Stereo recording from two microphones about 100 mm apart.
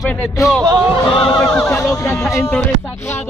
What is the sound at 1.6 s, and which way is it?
Speech, 25° left (ahead or behind).